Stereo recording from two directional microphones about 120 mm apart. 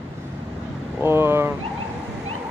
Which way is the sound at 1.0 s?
20° right (ahead or behind).